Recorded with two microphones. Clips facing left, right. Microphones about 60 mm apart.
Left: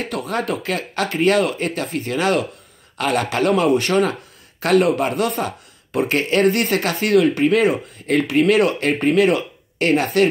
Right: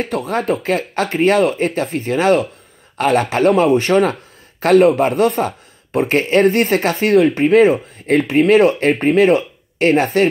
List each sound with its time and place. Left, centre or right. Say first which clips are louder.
0.0 s speech: right 4 dB; right